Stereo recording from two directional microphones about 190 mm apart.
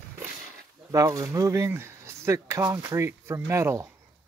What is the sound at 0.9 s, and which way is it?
Speech, 15° right (ahead or behind).